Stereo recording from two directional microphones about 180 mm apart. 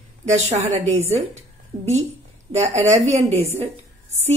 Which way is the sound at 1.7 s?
25° right (ahead or behind).